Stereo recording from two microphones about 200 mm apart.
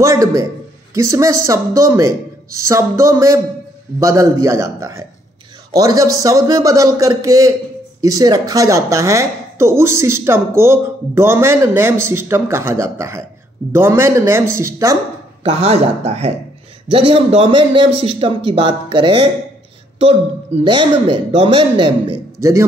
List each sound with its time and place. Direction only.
0.0 s speech: 15° right (ahead or behind)
15.4 s a man's voice: 30° right (ahead or behind)
20.6 s a man's voice: 25° right (ahead or behind)